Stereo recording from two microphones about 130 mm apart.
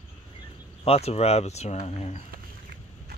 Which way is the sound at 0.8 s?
50° left (ahead or behind).